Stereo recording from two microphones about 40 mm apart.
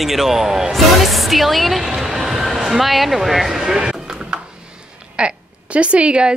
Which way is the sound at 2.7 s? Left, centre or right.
Centre.